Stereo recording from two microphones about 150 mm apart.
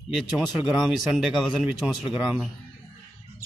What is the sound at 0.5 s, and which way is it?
Speech, 5° right (ahead or behind).